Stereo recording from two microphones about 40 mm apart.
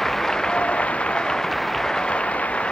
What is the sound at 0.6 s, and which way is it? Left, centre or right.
Applause, left.